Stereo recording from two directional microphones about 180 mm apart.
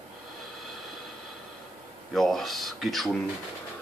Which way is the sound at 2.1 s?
Centre (ahead or behind).